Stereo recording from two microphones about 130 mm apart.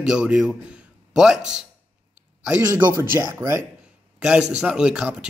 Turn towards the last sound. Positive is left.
turn(degrees=-5)  # may be behind; listen again after turning